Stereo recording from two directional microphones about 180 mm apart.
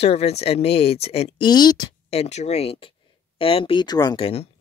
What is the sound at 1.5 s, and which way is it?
Speech, 25° left (ahead or behind).